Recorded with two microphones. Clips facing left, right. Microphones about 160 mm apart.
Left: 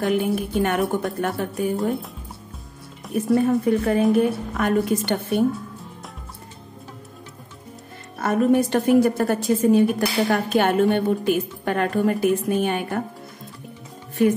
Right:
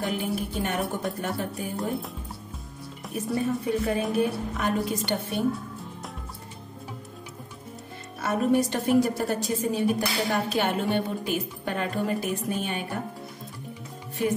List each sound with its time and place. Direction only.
0.0 s a woman's voice: 55° left (ahead or behind)
3.1 s a woman's voice: 55° left (ahead or behind)
8.2 s a woman's voice: 50° left (ahead or behind)